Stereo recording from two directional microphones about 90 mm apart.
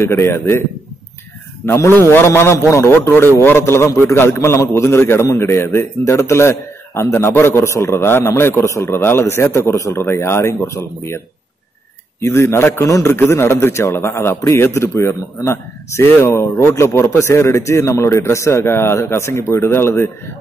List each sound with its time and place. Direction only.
0.0 s a man's voice: 30° left (ahead or behind)
1.7 s a man's voice: 25° left (ahead or behind)
12.2 s a man's voice: 30° left (ahead or behind)